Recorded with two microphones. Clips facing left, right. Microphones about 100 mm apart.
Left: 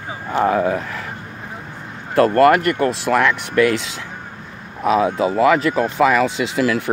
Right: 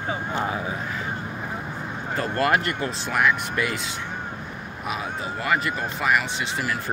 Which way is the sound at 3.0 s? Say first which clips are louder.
Left 6 dB; 80° left.